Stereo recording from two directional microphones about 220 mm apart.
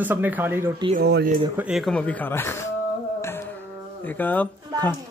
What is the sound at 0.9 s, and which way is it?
Speech, 45° right (ahead or behind).